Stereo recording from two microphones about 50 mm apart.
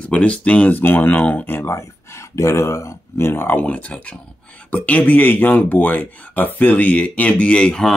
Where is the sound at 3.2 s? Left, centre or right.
Left.